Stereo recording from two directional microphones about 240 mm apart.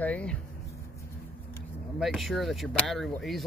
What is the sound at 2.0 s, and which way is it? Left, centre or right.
Speech, centre.